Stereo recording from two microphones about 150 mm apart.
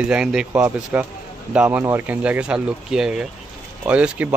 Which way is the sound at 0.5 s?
20° right (ahead or behind).